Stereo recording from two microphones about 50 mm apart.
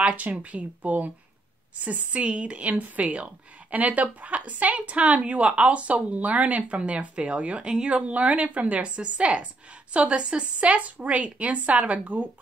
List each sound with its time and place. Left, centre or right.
0.0 s speech: right
7.6 s speech: centre
7.9 s speech: right